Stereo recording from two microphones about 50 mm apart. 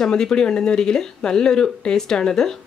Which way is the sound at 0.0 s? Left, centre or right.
Centre.